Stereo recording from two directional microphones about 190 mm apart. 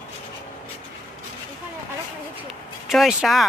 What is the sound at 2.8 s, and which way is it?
Speech, centre (ahead or behind).